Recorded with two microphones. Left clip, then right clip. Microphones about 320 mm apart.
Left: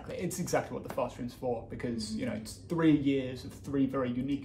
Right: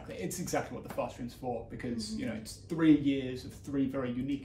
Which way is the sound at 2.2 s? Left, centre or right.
Centre.